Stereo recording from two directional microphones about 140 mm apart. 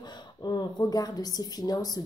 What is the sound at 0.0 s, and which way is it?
Speech, 30° left (ahead or behind).